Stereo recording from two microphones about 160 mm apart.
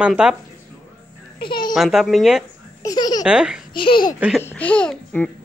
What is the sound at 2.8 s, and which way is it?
Baby laughter, 25° left (ahead or behind).